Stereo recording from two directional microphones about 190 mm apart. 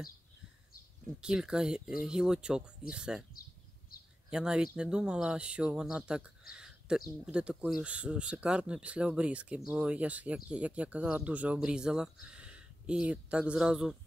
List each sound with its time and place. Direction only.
1.2 s speech: 5° right (ahead or behind)
4.3 s speech: 5° right (ahead or behind)